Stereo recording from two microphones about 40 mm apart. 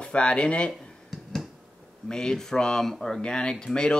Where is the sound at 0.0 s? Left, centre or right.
Left.